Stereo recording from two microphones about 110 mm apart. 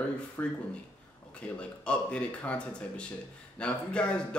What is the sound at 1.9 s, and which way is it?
A man's voice, 10° left (ahead or behind).